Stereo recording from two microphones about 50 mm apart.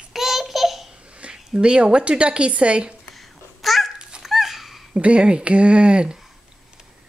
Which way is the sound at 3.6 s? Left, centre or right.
Centre.